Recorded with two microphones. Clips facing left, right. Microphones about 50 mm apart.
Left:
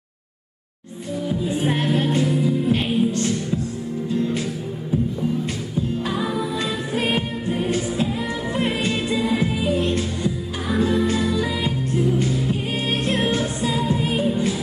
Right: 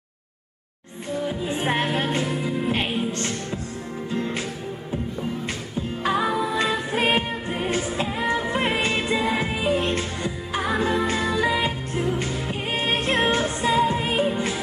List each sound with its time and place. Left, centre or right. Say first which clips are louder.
1.3 s music: left 4 dB; right
3.1 s music: left 5 dB; right
6.0 s music: right 2 dB; right